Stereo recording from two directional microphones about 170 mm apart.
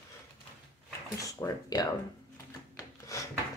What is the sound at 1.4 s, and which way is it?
Speech, 20° left (ahead or behind).